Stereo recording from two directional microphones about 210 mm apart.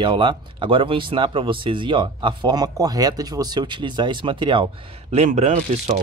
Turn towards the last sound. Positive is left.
turn(degrees=-30)  # may be behind; listen again after turning